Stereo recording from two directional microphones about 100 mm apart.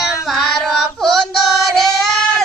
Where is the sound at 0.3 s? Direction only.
5° left (ahead or behind).